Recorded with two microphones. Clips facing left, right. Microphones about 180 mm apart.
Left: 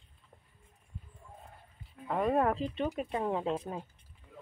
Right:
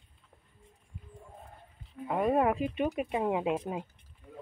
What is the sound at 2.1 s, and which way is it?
Speech, 10° right (ahead or behind).